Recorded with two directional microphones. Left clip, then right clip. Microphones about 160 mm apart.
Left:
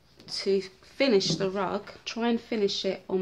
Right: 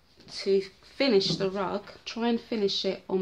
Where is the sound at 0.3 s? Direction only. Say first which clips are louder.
Right 1 dB; centre (ahead or behind).